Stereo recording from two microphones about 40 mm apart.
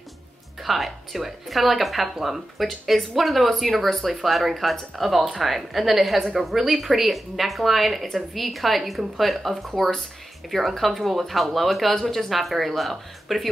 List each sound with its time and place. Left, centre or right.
0.7 s speech: centre